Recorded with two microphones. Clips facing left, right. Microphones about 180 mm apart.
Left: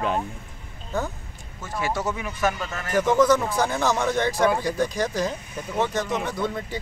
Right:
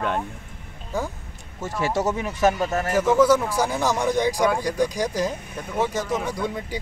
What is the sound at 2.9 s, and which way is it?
Speech, 5° right (ahead or behind).